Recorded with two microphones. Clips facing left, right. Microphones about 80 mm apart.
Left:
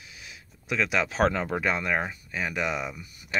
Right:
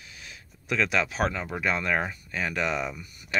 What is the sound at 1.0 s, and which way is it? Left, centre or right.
Speech, left.